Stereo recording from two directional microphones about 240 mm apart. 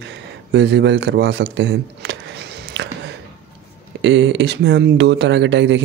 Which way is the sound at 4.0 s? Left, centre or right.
Right.